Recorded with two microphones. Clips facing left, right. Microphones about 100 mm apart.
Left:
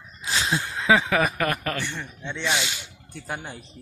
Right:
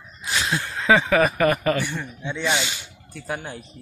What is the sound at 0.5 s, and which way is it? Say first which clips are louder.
Speech: right 2 dB; 10° left (ahead or behind).